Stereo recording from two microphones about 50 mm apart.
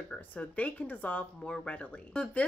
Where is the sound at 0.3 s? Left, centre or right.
Left.